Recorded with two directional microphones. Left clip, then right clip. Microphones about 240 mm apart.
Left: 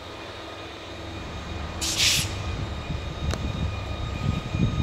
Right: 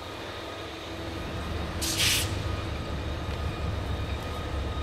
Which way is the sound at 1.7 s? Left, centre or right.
Left.